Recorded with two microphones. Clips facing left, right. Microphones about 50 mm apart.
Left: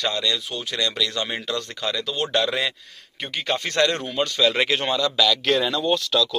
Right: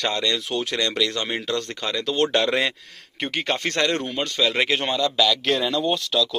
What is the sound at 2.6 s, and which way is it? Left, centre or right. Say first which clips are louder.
Speech: right 2 dB; right.